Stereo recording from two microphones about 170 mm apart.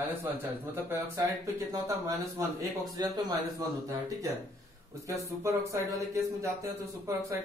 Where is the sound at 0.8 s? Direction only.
15° right (ahead or behind).